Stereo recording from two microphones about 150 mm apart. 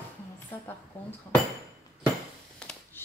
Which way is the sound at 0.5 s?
15° left (ahead or behind).